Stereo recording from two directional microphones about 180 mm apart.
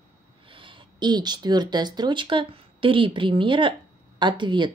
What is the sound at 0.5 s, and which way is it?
Speech, 30° right (ahead or behind).